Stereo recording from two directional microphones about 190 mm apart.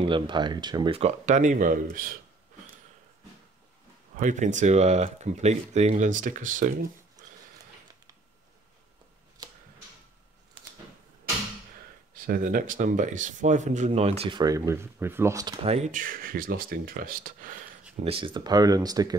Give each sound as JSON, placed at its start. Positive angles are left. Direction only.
{"t": 0.0, "sound": "speech", "side_deg": -25}
{"t": 4.2, "sound": "speech", "side_deg": -40}
{"t": 12.1, "sound": "speech", "side_deg": -45}
{"t": 15.6, "sound": "speech", "side_deg": -35}
{"t": 18.0, "sound": "speech", "side_deg": -30}